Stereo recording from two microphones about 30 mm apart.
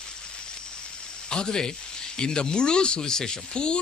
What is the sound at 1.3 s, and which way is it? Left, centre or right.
Speech, left.